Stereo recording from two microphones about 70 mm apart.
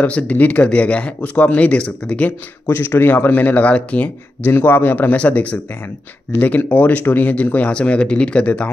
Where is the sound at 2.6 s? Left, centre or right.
Left.